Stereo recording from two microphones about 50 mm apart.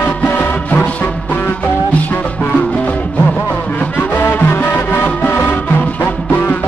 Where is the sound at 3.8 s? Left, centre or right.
Left.